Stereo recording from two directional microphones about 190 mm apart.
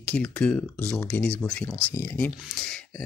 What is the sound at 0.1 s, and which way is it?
Speech, 5° left (ahead or behind).